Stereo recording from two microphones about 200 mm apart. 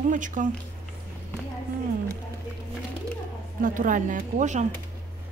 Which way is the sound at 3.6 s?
40° right (ahead or behind).